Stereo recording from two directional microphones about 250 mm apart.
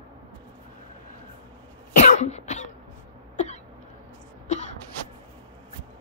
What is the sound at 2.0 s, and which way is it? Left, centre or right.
Cough, left.